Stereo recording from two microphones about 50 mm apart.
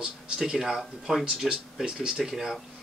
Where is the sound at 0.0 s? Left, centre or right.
Centre.